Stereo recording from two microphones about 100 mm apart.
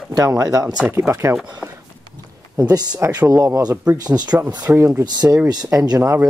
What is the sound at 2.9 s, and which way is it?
Speech, 25° right (ahead or behind).